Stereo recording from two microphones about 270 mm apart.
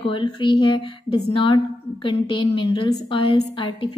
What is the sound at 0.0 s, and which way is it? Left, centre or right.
A woman's voice, centre.